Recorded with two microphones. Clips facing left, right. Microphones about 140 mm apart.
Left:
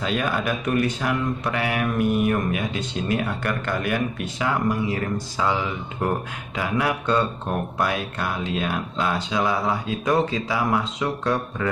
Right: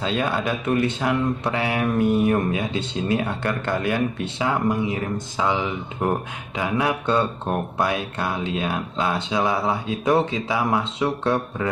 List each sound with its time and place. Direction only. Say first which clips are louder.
0.0 s speech: right 1 dB; 25° right (ahead or behind)